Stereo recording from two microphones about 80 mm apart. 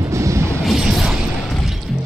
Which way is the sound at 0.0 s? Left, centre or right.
Right.